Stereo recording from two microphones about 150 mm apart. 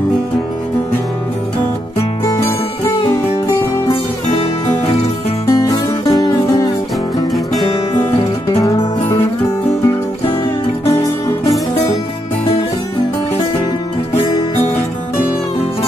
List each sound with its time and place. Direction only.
5.5 s music: 25° left (ahead or behind)